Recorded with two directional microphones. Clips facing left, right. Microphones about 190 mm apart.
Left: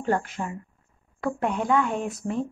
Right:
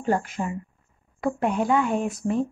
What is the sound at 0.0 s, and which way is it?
Speech, 10° right (ahead or behind).